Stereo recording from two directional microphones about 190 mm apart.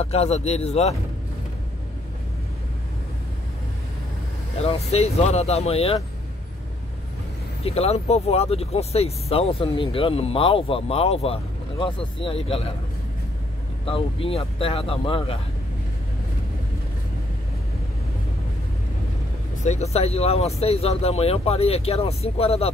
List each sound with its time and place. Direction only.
0.0 s speech: 35° left (ahead or behind)
4.6 s speech: 35° left (ahead or behind)
7.6 s speech: 30° left (ahead or behind)
13.8 s speech: 30° left (ahead or behind)
19.6 s speech: 35° left (ahead or behind)